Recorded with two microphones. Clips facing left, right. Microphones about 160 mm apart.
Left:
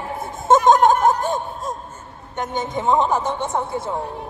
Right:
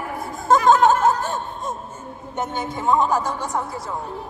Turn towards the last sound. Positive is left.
turn(degrees=25)  # may be behind; listen again after turning